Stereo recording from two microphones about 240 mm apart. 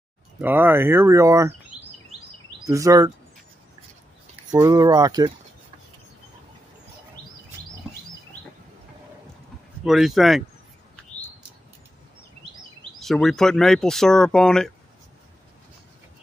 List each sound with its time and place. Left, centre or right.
0.4 s speech: centre
2.6 s speech: centre
4.5 s speech: centre
9.8 s speech: centre
13.0 s speech: centre